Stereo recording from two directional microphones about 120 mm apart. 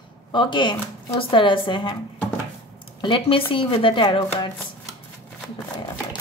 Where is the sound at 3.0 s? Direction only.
45° left (ahead or behind).